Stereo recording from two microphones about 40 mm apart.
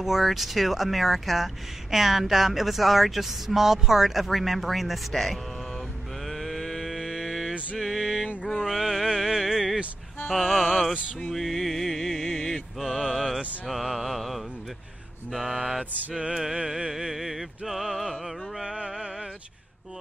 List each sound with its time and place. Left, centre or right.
0.0 s speech: centre
6.2 s mantra: centre
7.8 s speech: centre
8.6 s a sound: centre
10.3 s speech: centre
11.3 s music: centre
12.4 s mantra: centre
13.7 s speech: centre
16.1 s a sound: right
16.3 s music: centre